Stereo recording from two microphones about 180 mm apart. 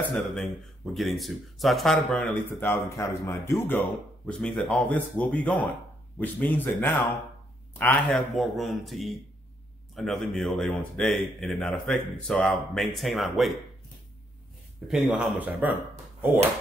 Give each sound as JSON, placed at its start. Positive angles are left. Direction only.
{"t": 0.1, "sound": "speech", "side_deg": 5}
{"t": 14.9, "sound": "speech", "side_deg": -5}